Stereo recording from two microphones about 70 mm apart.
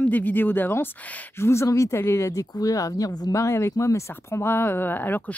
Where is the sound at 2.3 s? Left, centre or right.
Left.